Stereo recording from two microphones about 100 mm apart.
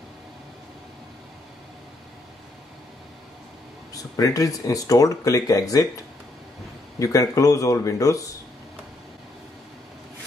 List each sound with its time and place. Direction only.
3.9 s speech: 35° left (ahead or behind)
7.0 s speech: 35° left (ahead or behind)